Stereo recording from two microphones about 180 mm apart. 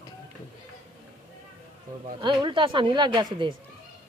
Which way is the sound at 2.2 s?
25° right (ahead or behind).